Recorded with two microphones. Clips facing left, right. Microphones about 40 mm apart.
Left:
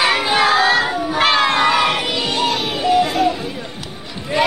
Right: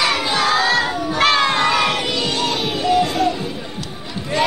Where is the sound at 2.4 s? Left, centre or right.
Centre.